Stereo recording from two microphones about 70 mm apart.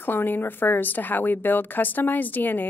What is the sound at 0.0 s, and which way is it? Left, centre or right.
A woman's voice, left.